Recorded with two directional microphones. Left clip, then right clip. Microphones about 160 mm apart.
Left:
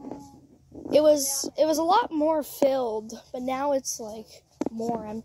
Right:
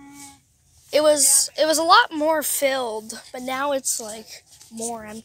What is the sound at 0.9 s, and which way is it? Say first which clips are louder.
A woman's voice: right 2 dB; 25° left (ahead or behind).